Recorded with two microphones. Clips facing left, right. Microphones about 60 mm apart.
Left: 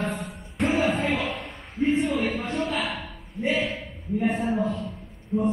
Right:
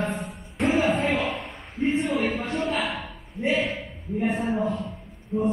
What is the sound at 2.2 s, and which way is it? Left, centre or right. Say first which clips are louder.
Speech: right 1 dB; right.